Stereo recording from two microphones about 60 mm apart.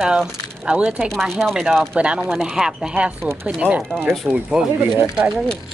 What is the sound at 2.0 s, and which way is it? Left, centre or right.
Speech, right.